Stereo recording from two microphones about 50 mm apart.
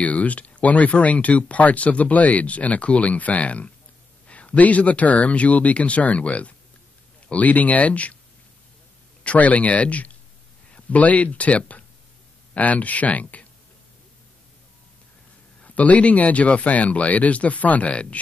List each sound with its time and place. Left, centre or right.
0.0 s speech: left
9.2 s speech: left
15.6 s speech: left